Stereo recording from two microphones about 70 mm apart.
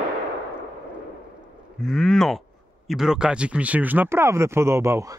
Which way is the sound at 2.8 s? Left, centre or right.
Centre.